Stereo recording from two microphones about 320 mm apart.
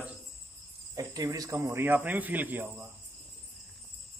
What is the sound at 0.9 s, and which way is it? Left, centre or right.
Speech, centre.